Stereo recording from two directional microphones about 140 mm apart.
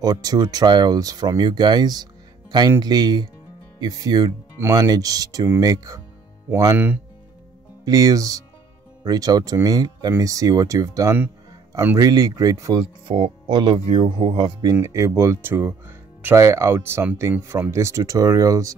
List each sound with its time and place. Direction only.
0.0 s speech: 25° right (ahead or behind)